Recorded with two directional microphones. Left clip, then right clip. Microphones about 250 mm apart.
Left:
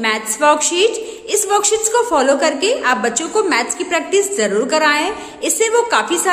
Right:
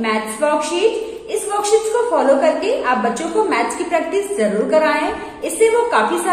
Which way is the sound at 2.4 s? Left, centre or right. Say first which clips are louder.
Even; left.